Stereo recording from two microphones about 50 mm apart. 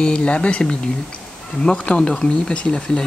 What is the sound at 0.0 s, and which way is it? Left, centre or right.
Speech, left.